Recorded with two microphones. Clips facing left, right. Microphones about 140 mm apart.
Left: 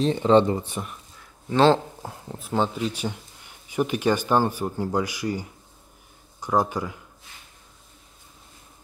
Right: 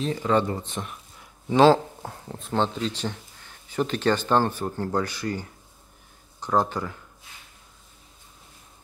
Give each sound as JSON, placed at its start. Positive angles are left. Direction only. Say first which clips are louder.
{"t": 0.0, "sound": "speech", "louder": "left 5 dB", "side_deg": 25}
{"t": 1.5, "sound": "speech", "louder": "right 1 dB", "side_deg": -10}
{"t": 2.0, "sound": "speech", "louder": "left 1 dB", "side_deg": 5}